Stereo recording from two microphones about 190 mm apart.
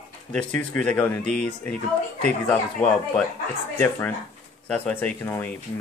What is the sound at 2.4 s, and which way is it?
Speech, 5° left (ahead or behind).